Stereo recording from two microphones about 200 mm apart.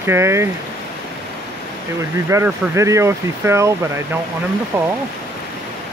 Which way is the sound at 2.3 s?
15° right (ahead or behind).